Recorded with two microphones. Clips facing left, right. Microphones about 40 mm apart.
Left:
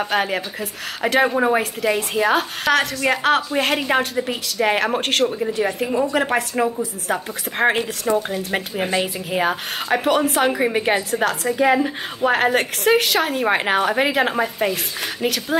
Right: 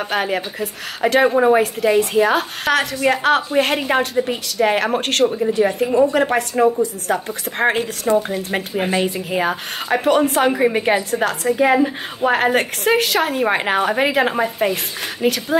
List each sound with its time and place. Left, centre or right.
0.0 s a woman's voice: centre